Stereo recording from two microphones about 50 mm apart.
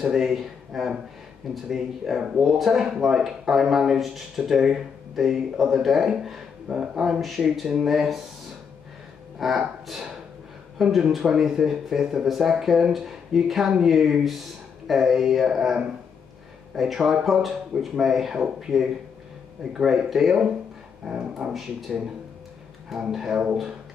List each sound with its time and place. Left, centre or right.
0.0 s speech: centre
9.4 s speech: centre
10.8 s speech: centre
23.1 s speech: centre